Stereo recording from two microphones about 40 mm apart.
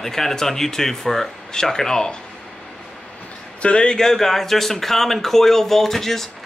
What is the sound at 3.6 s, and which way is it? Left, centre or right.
Speech, left.